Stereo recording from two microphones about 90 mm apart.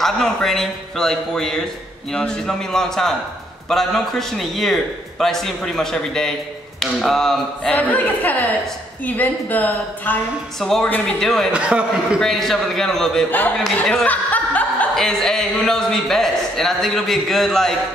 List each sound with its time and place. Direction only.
0.0 s a man's voice: 5° left (ahead or behind)
7.7 s a woman's voice: 20° left (ahead or behind)
10.6 s a man's voice: 5° left (ahead or behind)
11.5 s a man's voice: 10° right (ahead or behind)
12.2 s a man's voice: 5° left (ahead or behind)
13.7 s chuckle: 10° left (ahead or behind)
15.0 s a man's voice: 5° left (ahead or behind)